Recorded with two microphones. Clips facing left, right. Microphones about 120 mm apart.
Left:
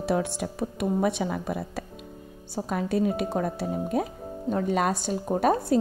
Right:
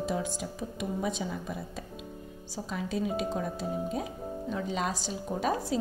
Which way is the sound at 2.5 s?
55° left (ahead or behind).